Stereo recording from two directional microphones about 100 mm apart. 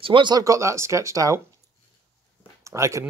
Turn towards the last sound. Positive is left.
turn(degrees=-30)  # may be behind; listen again after turning